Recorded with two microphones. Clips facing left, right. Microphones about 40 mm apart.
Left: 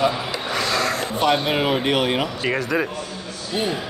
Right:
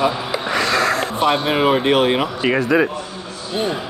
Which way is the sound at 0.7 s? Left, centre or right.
Right.